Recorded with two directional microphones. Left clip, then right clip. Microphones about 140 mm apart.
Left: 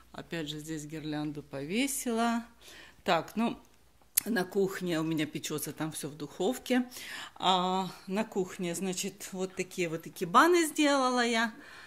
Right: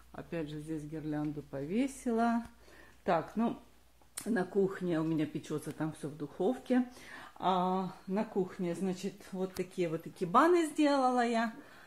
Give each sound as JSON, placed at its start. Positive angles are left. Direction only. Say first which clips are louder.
{"t": 0.1, "sound": "a woman's voice", "louder": "left 2 dB", "side_deg": 25}